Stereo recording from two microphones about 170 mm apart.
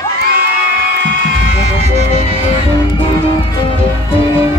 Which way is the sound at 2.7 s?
30° left (ahead or behind).